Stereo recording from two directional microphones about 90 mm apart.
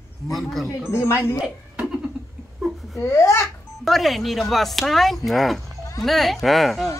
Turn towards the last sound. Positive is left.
turn(degrees=0)  # may be behind; listen again after turning